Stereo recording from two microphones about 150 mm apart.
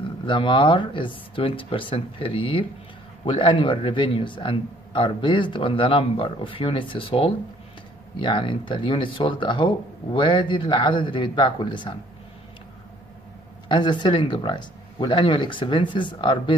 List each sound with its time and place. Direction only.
0.3 s speech: 35° left (ahead or behind)
13.7 s speech: 30° left (ahead or behind)